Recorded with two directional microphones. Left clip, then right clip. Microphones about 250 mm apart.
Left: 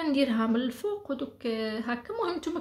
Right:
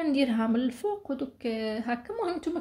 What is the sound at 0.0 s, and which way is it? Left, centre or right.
A woman's voice, centre.